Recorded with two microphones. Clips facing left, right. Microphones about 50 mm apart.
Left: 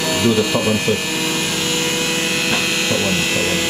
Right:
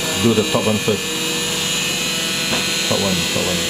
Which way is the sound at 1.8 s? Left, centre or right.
Left.